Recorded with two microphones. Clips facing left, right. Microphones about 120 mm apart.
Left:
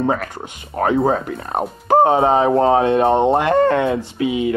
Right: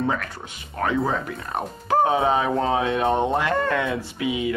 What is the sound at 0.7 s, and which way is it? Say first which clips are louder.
Speech: left 7 dB; 40° left (ahead or behind).